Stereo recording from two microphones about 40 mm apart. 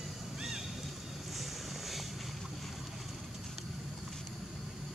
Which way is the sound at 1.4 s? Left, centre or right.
Centre.